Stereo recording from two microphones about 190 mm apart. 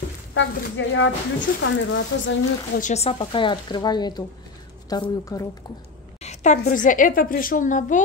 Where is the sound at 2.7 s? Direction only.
40° left (ahead or behind); by 5.4 s 20° left (ahead or behind).